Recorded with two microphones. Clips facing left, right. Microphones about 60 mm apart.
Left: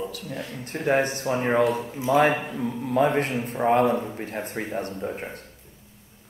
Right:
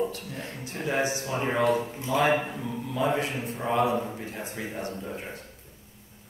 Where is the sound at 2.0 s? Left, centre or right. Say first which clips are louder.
Left 4 dB; left.